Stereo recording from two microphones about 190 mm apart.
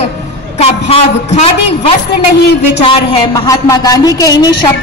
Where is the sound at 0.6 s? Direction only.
30° left (ahead or behind).